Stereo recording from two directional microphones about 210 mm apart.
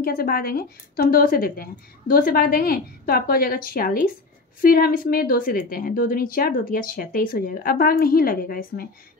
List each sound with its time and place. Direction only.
0.0 s a woman's voice: 45° left (ahead or behind)